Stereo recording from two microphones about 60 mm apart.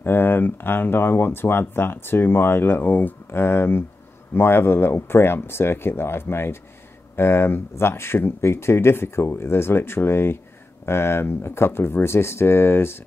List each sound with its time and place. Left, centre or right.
0.0 s speech: left